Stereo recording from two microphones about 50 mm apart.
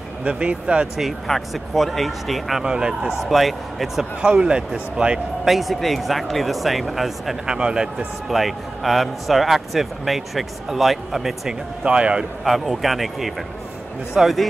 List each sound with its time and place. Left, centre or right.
0.2 s speech: right
1.2 s speech: centre
2.6 s speech: centre
3.2 s speech: centre
4.2 s speech: centre
5.4 s speech: centre
7.4 s speech: centre
8.3 s speech: centre
11.8 s speech: right
12.4 s speech: centre